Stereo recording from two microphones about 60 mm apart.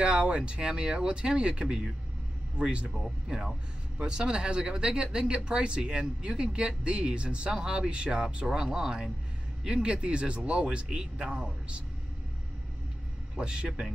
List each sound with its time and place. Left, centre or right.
0.0 s speech: centre
13.4 s speech: centre